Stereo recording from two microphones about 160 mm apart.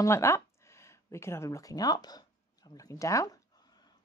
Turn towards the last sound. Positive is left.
turn(degrees=20)  # may be behind; listen again after turning